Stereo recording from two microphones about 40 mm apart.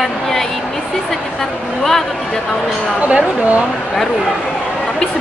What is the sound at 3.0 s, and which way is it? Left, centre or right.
Speech, right.